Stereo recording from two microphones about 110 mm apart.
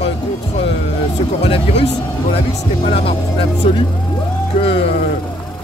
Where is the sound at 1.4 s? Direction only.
65° left (ahead or behind).